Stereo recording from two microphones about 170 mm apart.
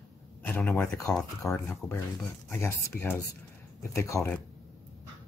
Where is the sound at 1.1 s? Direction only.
5° left (ahead or behind).